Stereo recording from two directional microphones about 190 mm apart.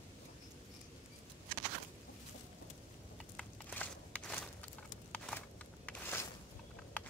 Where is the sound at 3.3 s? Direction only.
5° left (ahead or behind).